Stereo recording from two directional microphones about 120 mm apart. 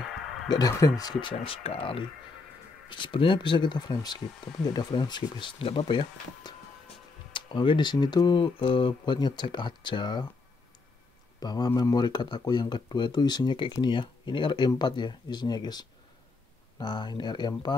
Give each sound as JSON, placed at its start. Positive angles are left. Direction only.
{"t": 0.5, "sound": "speech", "side_deg": 30}
{"t": 1.2, "sound": "speech", "side_deg": 50}
{"t": 11.3, "sound": "speech", "side_deg": 35}